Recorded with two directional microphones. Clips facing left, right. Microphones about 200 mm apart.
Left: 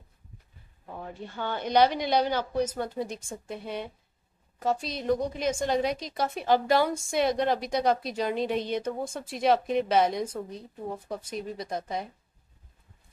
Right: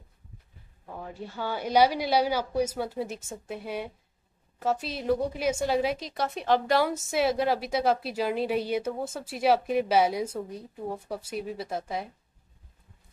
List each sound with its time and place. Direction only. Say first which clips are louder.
0.8 s a woman's voice: even; centre (ahead or behind)